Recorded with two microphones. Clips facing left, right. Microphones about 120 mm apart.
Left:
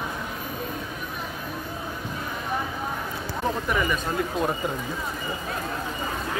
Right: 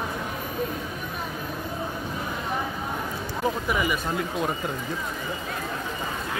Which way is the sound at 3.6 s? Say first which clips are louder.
Even; 10° right (ahead or behind).